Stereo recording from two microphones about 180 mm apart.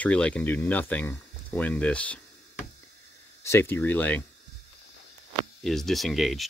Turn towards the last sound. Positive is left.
turn(degrees=0)  # may be behind; listen again after turning